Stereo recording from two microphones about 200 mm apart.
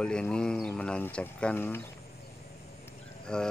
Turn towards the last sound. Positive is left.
turn(degrees=5)  # may be behind; listen again after turning